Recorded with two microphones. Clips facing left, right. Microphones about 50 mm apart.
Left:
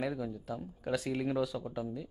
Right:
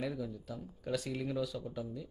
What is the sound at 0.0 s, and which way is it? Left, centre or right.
Speech, left.